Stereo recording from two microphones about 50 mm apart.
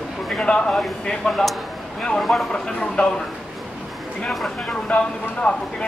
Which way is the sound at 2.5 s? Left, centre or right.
Left.